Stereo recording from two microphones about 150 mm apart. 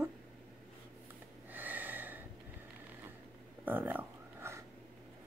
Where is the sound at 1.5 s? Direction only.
10° right (ahead or behind).